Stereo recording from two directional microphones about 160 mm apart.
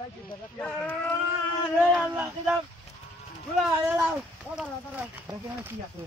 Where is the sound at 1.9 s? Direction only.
10° right (ahead or behind).